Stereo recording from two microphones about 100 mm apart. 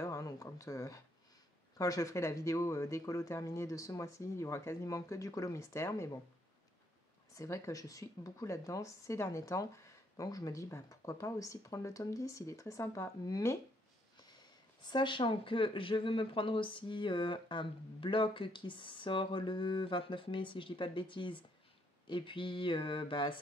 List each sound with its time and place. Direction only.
0.0 s a sound: 35° left (ahead or behind)
1.8 s speech: 35° left (ahead or behind)
7.3 s speech: 30° left (ahead or behind)
14.8 s speech: 50° left (ahead or behind)